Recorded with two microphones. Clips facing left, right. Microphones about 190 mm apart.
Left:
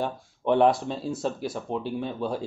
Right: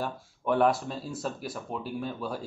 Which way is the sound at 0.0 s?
25° left (ahead or behind).